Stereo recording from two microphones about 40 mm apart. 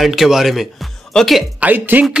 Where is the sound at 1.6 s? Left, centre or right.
Right.